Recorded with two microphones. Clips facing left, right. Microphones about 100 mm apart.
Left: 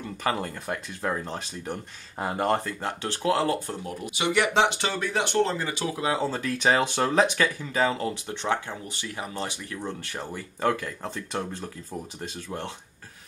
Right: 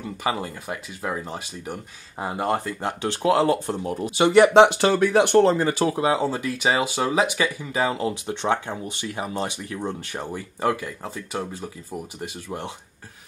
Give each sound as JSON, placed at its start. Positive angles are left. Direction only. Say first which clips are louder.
{"t": 0.0, "sound": "speech", "louder": "right 2 dB", "side_deg": -10}
{"t": 3.9, "sound": "speech", "louder": "right 9 dB", "side_deg": -35}
{"t": 6.0, "sound": "speech", "louder": "right 4 dB", "side_deg": -15}